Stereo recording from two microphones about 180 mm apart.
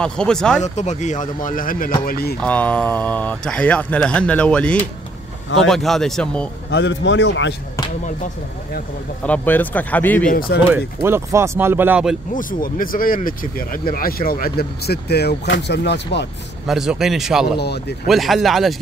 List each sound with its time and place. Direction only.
0.0 s speech: 5° left (ahead or behind)
0.6 s speech: 40° left (ahead or behind); by 2.3 s 60° left (ahead or behind)
2.4 s speech: 10° left (ahead or behind)
6.7 s a man's voice: 75° left (ahead or behind)
9.2 s speech: 10° left (ahead or behind)
10.2 s speech: 50° left (ahead or behind)
10.7 s speech: 15° right (ahead or behind)
12.4 s speech: 50° left (ahead or behind); by 16.3 s 70° left (ahead or behind)
16.6 s speech: centre (ahead or behind)
17.6 s speech: 65° left (ahead or behind)
18.0 s speech: centre (ahead or behind)